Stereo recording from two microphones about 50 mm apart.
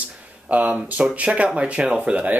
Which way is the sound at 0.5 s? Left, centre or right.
Right.